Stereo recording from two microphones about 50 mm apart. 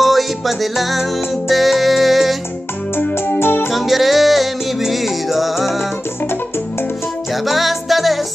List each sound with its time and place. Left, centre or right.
0.0 s music: centre
3.3 s music: left
3.7 s music: centre
7.4 s music: centre